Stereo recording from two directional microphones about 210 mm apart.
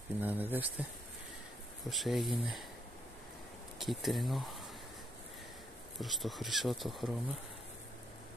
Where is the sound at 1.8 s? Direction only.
Centre (ahead or behind).